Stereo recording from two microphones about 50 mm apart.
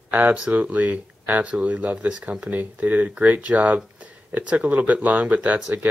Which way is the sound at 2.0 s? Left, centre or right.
Centre.